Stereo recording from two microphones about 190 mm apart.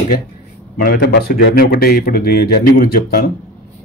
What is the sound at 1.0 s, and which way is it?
Speech, 60° left (ahead or behind).